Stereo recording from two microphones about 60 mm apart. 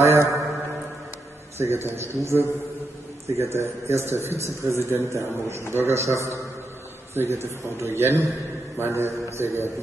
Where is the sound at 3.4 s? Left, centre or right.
Right.